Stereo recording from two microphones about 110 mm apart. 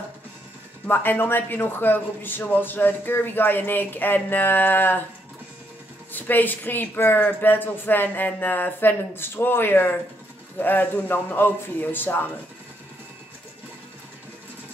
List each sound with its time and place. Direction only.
0.8 s speech: 20° left (ahead or behind)
6.1 s speech: 15° left (ahead or behind)